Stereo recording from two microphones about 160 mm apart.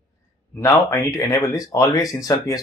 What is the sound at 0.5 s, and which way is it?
Speech, 15° left (ahead or behind).